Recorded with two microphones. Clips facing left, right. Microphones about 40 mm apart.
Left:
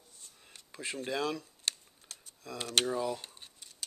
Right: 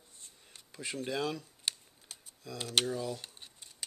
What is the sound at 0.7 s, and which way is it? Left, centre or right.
Speech, centre.